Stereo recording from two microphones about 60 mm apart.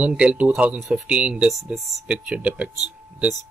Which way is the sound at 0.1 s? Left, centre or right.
Right.